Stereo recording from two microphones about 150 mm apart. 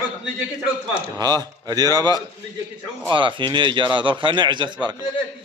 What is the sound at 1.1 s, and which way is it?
A man's voice, 25° right (ahead or behind).